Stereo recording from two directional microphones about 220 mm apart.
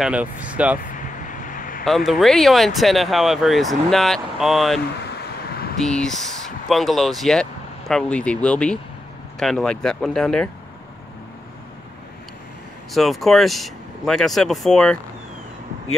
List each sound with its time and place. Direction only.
0.0 s speech: 5° right (ahead or behind)
0.9 s vehicle: 35° left (ahead or behind)
1.9 s speech: centre (ahead or behind)
12.9 s speech: centre (ahead or behind)